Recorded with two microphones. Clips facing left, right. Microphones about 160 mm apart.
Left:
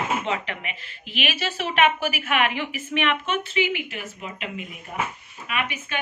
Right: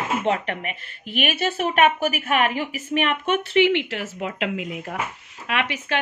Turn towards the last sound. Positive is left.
turn(degrees=-90)